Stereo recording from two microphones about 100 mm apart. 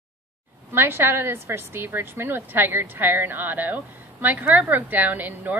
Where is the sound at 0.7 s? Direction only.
25° right (ahead or behind).